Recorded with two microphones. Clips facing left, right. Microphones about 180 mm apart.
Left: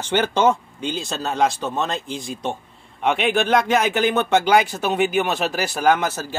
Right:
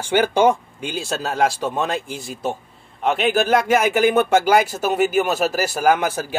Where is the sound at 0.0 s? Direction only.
10° right (ahead or behind).